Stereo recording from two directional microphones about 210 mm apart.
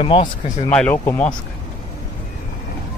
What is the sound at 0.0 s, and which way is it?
Speech, 25° left (ahead or behind).